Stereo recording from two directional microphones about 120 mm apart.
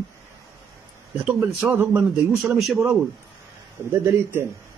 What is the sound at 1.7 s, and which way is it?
Speech, 15° right (ahead or behind).